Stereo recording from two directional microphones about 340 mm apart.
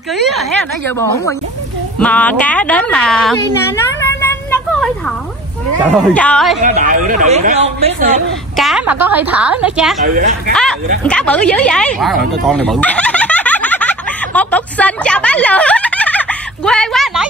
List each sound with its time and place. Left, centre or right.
0.1 s a woman's voice: centre
2.0 s a woman's voice: centre
6.6 s speech: right
8.5 s a woman's voice: centre
10.0 s speech: right
10.5 s a woman's voice: centre
12.4 s a sound: centre